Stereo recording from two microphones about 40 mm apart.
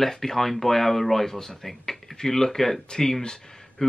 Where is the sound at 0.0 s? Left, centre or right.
Centre.